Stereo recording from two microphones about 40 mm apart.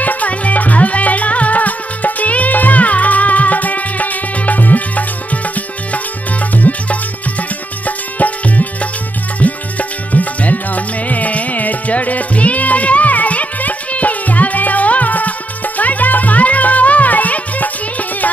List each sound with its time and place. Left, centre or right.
0.0 s music: left
6.5 s music: left